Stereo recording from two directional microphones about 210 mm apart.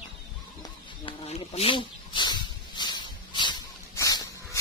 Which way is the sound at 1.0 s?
30° left (ahead or behind).